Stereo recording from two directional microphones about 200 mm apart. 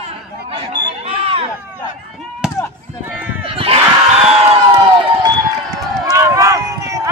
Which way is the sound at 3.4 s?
25° right (ahead or behind).